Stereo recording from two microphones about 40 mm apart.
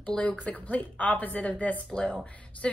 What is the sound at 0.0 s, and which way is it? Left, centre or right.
A woman's voice, left.